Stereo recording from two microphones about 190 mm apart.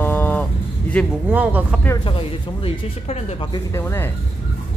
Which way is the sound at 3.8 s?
10° left (ahead or behind).